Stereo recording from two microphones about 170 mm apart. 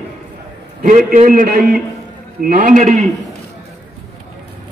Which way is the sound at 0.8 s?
50° right (ahead or behind).